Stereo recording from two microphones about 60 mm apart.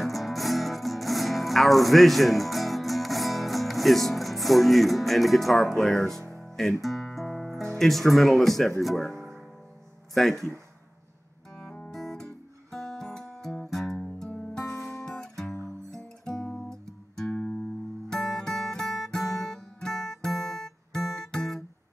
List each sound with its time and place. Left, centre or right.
0.0 s music: centre
7.7 s speech: centre
10.1 s speech: centre
11.9 s music: centre
13.9 s music: centre
16.0 s guitar: centre
17.3 s music: centre
18.1 s music: centre